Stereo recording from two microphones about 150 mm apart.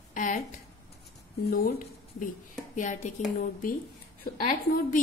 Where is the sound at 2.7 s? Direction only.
55° left (ahead or behind).